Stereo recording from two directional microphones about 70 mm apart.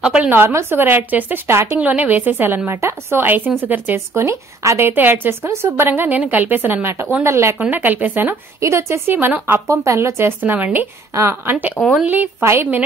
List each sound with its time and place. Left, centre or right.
0.0 s a woman's voice: centre
0.5 s speech: right
1.7 s a woman's voice: right
2.8 s speech: right
3.2 s a woman's voice: right
7.7 s a woman's voice: right
8.5 s speech: right
9.7 s speech: right
10.5 s a woman's voice: right
11.1 s a woman's voice: right
11.8 s speech: left
12.1 s a woman's voice: right